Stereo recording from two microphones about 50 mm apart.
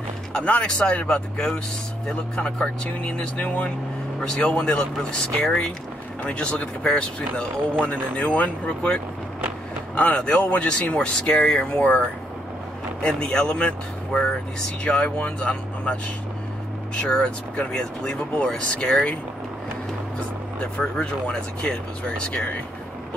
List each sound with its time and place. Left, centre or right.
0.5 s speech: left
8.6 s speech: centre
10.1 s speech: left
11.0 s speech: centre
17.1 s speech: centre
20.6 s speech: centre